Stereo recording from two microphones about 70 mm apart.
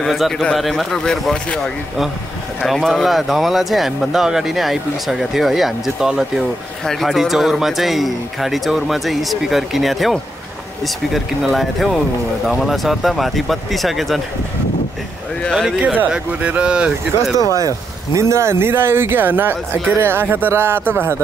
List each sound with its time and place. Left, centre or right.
0.0 s speech: centre
2.8 s speech: centre
6.9 s speech: centre
15.8 s speech: centre
17.6 s speech: right